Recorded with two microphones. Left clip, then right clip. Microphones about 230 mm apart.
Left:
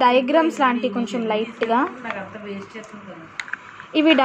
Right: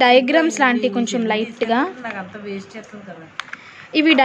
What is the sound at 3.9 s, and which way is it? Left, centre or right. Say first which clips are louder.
Speech: right 2 dB; right.